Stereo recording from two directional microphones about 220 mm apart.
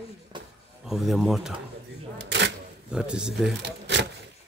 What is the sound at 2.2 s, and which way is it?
Camera, 50° right (ahead or behind).